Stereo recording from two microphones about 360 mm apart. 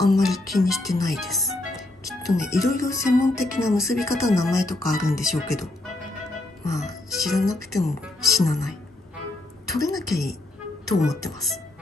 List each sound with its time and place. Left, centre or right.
0.0 s music: centre